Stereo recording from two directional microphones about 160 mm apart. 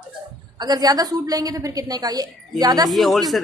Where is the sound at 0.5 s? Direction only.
25° right (ahead or behind).